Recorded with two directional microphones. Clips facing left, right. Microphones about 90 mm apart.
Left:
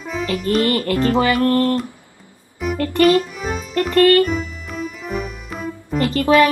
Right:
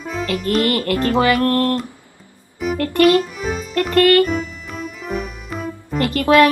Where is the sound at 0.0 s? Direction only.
Centre (ahead or behind).